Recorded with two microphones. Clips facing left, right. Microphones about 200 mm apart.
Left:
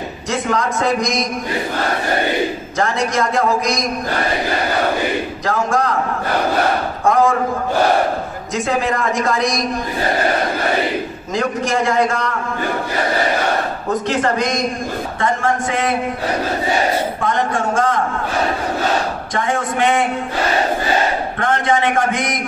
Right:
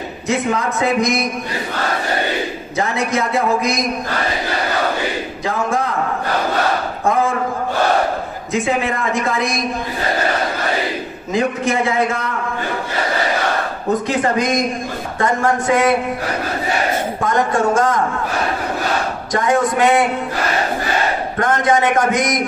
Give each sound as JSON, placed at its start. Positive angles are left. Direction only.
{"t": 0.3, "sound": "a man's voice", "side_deg": -5}
{"t": 2.8, "sound": "a man's voice", "side_deg": -5}
{"t": 5.4, "sound": "a man's voice", "side_deg": 0}
{"t": 8.5, "sound": "a man's voice", "side_deg": 0}
{"t": 11.3, "sound": "a man's voice", "side_deg": -5}
{"t": 15.1, "sound": "a man's voice", "side_deg": -45}
{"t": 17.2, "sound": "a man's voice", "side_deg": -45}
{"t": 19.3, "sound": "speech", "side_deg": -40}
{"t": 21.4, "sound": "a man's voice", "side_deg": -45}